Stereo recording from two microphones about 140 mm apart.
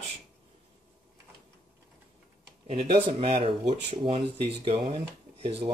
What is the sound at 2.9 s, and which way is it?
Speech, 40° right (ahead or behind).